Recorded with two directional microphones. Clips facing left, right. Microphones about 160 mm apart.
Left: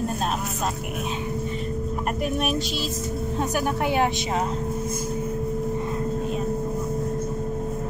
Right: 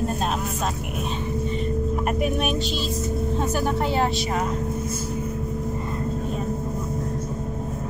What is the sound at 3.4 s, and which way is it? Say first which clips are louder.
Speech: left 1 dB; 15° left (ahead or behind).